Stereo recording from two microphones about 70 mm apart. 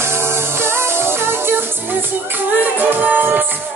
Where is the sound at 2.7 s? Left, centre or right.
Right.